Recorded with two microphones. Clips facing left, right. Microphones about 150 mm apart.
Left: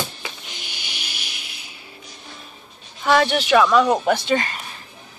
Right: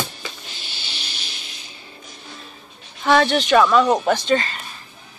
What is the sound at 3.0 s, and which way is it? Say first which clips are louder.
Speech: right 1 dB; 5° left (ahead or behind).